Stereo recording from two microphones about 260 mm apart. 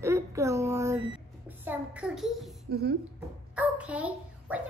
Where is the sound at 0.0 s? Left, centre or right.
Centre.